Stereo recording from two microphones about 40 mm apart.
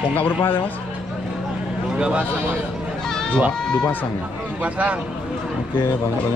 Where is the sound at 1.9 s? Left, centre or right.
Right.